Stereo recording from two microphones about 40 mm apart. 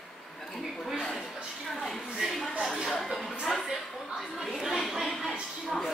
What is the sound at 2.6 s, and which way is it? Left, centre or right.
Music, centre.